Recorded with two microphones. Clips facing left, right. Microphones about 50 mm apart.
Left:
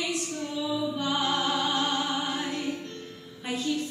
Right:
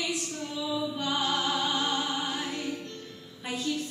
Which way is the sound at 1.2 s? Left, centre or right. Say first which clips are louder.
Left 1 dB; left.